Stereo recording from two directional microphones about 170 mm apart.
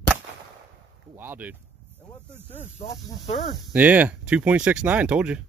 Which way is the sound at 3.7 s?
10° right (ahead or behind).